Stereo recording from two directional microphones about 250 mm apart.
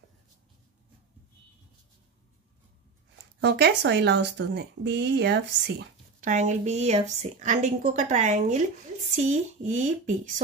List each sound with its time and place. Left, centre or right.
3.3 s speech: right
6.2 s a woman's voice: right